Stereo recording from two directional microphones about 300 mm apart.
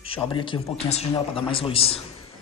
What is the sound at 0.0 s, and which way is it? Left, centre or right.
A man's voice, centre.